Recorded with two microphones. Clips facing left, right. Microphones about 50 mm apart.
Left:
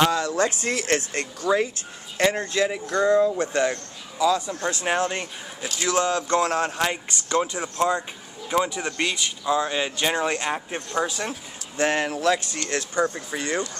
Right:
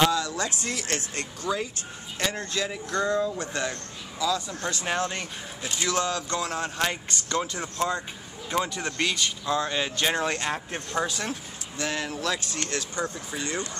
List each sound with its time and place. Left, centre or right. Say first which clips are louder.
0.1 s speech: left 5 dB; left
6.4 s speech: left 7 dB; left
6.8 s speech: left 2 dB; centre
11.7 s speech: left 7 dB; left